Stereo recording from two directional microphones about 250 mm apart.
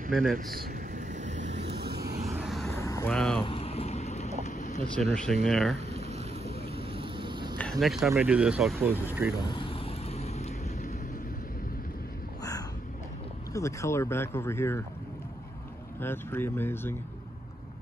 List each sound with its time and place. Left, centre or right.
0.0 s speech: right
0.5 s vehicle: right
1.8 s vehicle: right
2.2 s vehicle: centre
2.8 s speech: centre
3.4 s a sound: left
5.1 s speech: centre
5.9 s vehicle: right
7.8 s speech: centre
9.4 s vehicle: centre
13.5 s speech: centre
16.0 s speech: centre